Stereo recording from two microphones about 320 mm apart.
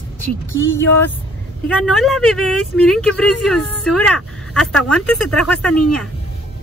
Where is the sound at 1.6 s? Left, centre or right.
Centre.